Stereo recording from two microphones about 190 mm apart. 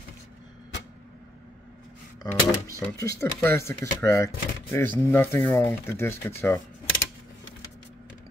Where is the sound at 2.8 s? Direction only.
15° left (ahead or behind).